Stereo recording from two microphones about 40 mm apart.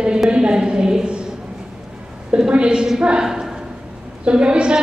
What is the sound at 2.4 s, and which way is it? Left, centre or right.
A woman's voice, right.